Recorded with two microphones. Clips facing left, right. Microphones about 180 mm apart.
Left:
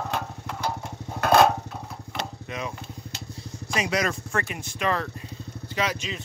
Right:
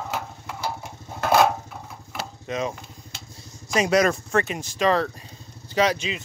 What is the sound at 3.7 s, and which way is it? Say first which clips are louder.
Speech: right 6 dB; 45° right (ahead or behind).